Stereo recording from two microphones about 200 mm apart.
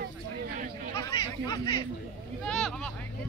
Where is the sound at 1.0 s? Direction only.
15° left (ahead or behind).